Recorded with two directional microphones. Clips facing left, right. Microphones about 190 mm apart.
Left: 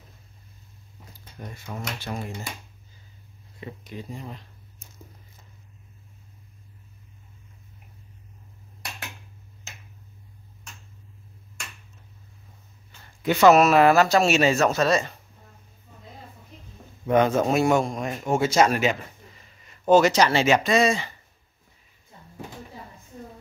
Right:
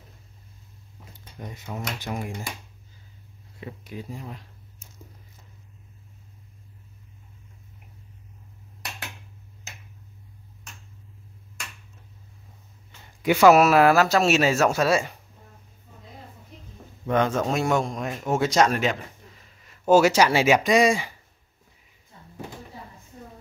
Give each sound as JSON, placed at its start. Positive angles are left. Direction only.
{"t": 1.1, "sound": "speech", "side_deg": -20}
{"t": 3.8, "sound": "speech", "side_deg": -5}
{"t": 13.0, "sound": "speech", "side_deg": -10}
{"t": 17.2, "sound": "speech", "side_deg": 5}